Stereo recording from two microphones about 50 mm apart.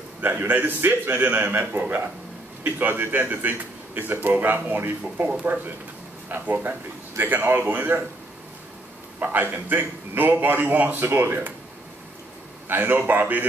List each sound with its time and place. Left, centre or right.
0.4 s a man's voice: right
1.1 s a man's voice: right
6.2 s a man's voice: right
9.2 s a man's voice: right
12.6 s a man's voice: right